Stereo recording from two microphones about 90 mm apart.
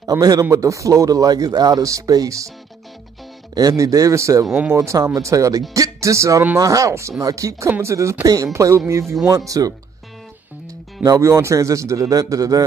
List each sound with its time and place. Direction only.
0.0 s a man's voice: 40° right (ahead or behind)
3.5 s a man's voice: 40° right (ahead or behind)
11.1 s a man's voice: 35° right (ahead or behind)